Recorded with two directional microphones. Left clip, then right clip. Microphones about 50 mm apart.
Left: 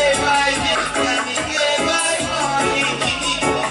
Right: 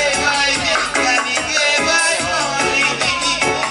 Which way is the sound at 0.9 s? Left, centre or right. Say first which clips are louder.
Right 3 dB; centre.